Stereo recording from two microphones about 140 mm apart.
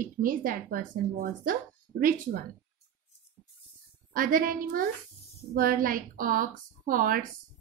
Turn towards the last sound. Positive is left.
turn(degrees=-85)